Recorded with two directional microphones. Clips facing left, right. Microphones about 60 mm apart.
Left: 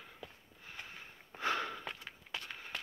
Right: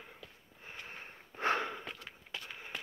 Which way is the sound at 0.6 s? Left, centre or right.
Right.